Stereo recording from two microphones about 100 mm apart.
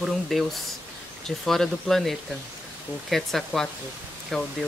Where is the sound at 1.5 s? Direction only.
5° left (ahead or behind).